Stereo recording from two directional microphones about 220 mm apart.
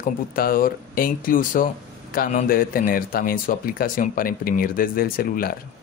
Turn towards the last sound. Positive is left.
turn(degrees=40)  # may be behind; listen again after turning